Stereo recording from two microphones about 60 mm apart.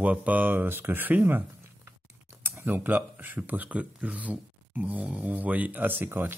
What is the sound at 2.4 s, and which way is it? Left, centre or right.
Speech, right.